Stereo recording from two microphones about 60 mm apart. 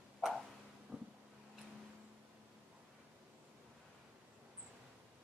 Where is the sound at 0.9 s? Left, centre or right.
Right.